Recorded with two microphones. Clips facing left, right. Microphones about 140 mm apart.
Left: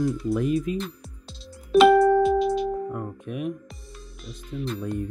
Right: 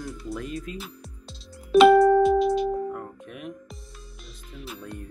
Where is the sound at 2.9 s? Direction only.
15° left (ahead or behind).